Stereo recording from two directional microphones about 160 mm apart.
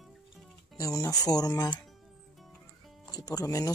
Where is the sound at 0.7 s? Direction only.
20° left (ahead or behind).